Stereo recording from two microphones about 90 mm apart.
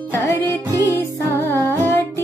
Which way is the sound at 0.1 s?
25° left (ahead or behind).